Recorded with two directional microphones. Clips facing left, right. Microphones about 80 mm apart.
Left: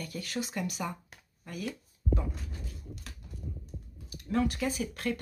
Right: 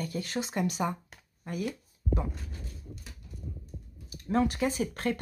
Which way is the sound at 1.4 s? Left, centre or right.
Right.